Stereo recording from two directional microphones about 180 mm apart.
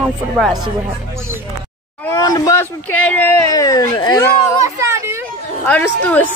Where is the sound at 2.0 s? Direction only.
20° left (ahead or behind).